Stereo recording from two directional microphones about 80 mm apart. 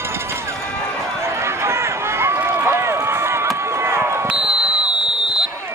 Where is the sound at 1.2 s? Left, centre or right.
Right.